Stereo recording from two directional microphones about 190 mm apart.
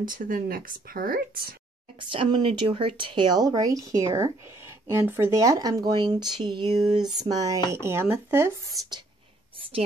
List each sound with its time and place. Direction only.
0.0 s speech: 45° right (ahead or behind)
2.0 s speech: 25° right (ahead or behind)